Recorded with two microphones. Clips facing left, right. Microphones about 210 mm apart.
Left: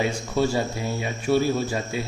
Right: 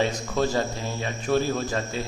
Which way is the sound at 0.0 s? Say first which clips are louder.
Left 1 dB; 10° left (ahead or behind).